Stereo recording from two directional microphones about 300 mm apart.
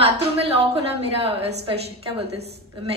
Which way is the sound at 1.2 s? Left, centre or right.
Centre.